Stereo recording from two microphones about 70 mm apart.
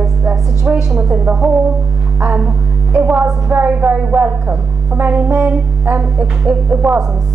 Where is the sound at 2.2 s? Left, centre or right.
Centre.